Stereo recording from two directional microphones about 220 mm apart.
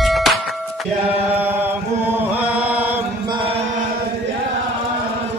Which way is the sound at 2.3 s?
5° right (ahead or behind).